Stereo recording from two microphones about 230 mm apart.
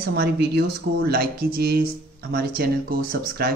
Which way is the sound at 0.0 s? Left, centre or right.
Right.